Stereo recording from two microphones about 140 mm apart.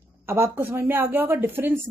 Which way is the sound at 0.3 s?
15° right (ahead or behind).